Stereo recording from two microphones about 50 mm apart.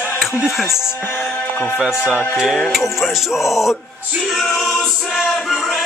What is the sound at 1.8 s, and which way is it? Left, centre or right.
Speech, centre.